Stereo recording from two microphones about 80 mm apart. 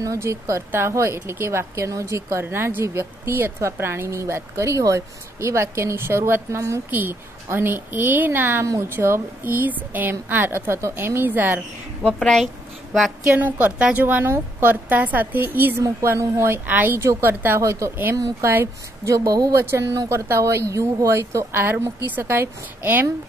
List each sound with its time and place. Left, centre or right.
0.0 s a woman's voice: right
12.0 s a woman's voice: centre
13.3 s a woman's voice: right
15.8 s speech: right
19.1 s speech: right
19.5 s a woman's voice: right